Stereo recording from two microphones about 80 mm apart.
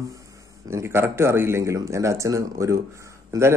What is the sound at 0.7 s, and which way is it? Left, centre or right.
A man's voice, right.